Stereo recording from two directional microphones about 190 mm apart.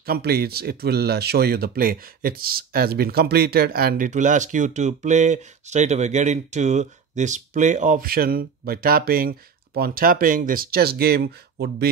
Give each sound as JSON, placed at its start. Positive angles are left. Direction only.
{"t": 0.0, "sound": "speech", "side_deg": -55}